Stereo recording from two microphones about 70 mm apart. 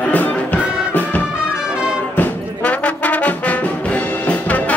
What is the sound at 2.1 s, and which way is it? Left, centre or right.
Brass instrument, left.